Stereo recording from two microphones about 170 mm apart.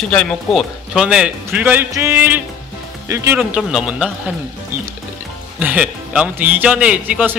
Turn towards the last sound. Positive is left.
turn(degrees=-10)  # may be behind; listen again after turning